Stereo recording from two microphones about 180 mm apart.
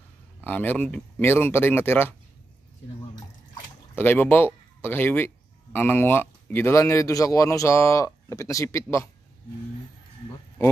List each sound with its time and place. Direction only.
0.4 s speech: 10° left (ahead or behind)
3.9 s speech: 10° left (ahead or behind)